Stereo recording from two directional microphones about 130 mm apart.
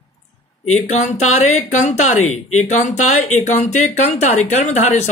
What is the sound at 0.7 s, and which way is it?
Speech, 55° left (ahead or behind).